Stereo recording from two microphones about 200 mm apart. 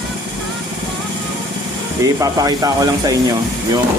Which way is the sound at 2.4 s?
15° right (ahead or behind).